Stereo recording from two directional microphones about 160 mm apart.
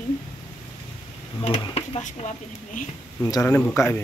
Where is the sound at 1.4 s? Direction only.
35° left (ahead or behind).